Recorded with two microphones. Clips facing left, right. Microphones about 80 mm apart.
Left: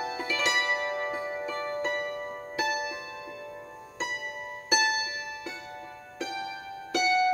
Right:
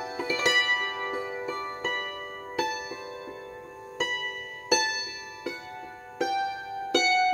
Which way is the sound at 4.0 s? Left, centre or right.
Right.